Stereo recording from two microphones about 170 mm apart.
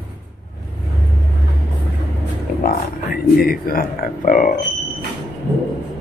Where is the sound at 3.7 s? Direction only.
60° left (ahead or behind).